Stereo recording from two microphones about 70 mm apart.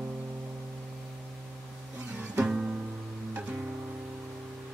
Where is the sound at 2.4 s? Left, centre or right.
Centre.